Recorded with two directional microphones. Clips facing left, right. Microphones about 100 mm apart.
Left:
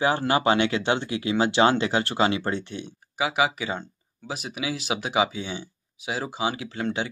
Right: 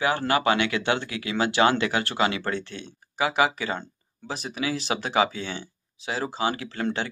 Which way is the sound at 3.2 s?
5° left (ahead or behind).